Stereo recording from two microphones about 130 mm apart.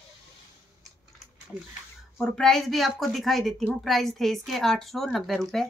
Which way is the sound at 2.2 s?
5° left (ahead or behind).